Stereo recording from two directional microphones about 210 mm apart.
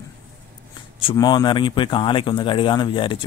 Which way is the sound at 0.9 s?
20° left (ahead or behind).